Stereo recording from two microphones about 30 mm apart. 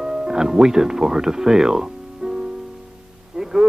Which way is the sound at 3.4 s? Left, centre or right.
Centre.